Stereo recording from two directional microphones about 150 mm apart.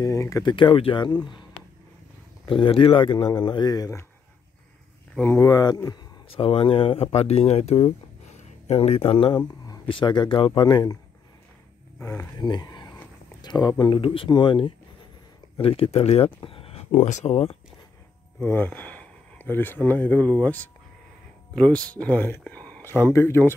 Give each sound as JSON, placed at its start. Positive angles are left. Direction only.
{"t": 0.0, "sound": "speech", "side_deg": 20}
{"t": 2.4, "sound": "speech", "side_deg": 35}
{"t": 5.4, "sound": "speech", "side_deg": 25}
{"t": 6.3, "sound": "speech", "side_deg": 40}
{"t": 12.0, "sound": "speech", "side_deg": 20}
{"t": 16.3, "sound": "a sound", "side_deg": 35}
{"t": 16.9, "sound": "speech", "side_deg": 50}
{"t": 18.4, "sound": "speech", "side_deg": 15}